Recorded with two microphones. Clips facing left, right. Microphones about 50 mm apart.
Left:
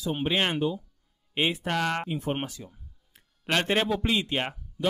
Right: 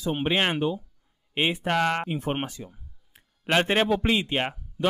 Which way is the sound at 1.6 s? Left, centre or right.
Centre.